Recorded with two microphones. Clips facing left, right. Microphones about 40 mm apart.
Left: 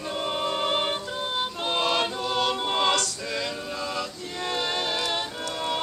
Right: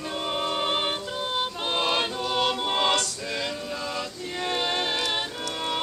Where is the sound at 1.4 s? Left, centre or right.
Centre.